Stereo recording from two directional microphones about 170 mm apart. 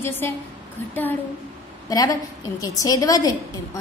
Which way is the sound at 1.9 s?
20° left (ahead or behind).